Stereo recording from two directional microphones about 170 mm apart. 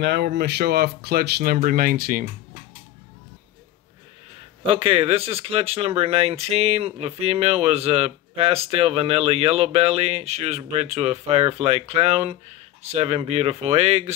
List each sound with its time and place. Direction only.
0.0 s speech: 85° right; by 2.2 s 55° right (ahead or behind)
4.7 s speech: 35° right (ahead or behind)